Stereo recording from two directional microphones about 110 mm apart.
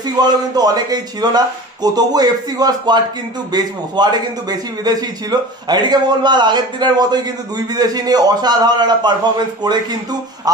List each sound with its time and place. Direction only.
0.2 s a man's voice: 35° right (ahead or behind)